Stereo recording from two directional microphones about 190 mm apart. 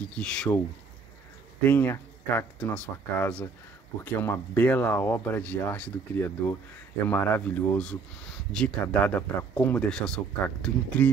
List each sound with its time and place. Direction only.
0.0 s speech: 5° left (ahead or behind)
1.6 s speech: 10° left (ahead or behind)